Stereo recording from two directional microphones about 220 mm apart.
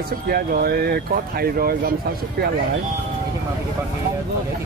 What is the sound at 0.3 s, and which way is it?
Speech, 45° right (ahead or behind).